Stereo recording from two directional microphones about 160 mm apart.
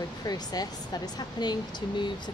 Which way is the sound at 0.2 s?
25° left (ahead or behind).